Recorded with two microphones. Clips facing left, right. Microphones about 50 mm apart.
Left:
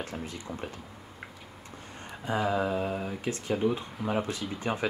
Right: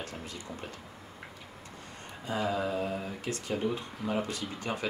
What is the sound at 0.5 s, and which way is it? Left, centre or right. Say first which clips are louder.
Speech: left 4 dB; centre.